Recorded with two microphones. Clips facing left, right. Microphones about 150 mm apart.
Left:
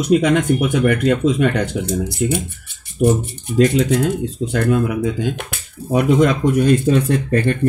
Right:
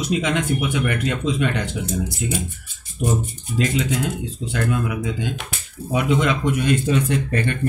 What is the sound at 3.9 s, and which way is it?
Speech, 45° left (ahead or behind).